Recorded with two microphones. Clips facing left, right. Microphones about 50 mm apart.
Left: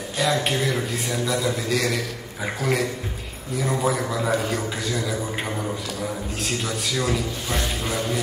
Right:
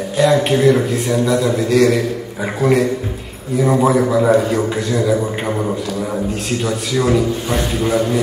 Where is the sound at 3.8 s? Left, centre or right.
Centre.